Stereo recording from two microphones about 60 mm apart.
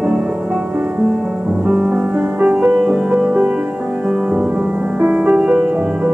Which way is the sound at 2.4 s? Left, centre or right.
Right.